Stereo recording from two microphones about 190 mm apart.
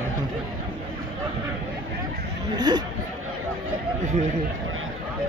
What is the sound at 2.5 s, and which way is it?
Speech, 20° right (ahead or behind).